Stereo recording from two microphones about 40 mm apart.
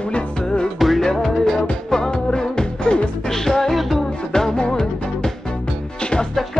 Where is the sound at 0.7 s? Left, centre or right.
Centre.